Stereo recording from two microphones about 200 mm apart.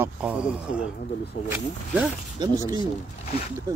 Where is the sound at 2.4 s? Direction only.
20° right (ahead or behind).